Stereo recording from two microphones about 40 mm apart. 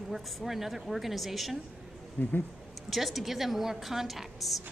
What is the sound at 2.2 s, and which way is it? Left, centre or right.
Speech, left.